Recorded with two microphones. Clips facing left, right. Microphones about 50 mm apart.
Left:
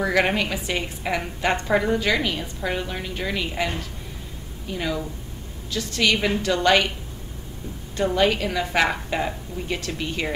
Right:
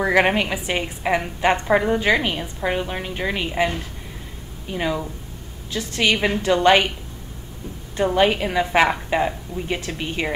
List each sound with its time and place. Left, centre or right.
0.0 s a woman's voice: right
8.0 s a woman's voice: right